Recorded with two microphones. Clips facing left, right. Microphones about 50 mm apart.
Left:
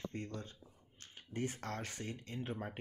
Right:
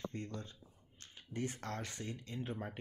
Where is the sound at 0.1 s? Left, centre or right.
Left.